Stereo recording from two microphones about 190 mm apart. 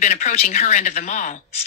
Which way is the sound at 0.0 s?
40° left (ahead or behind).